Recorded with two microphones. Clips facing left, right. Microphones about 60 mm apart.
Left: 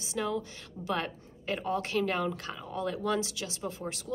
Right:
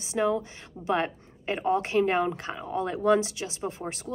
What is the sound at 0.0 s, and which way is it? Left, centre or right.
A woman's voice, right.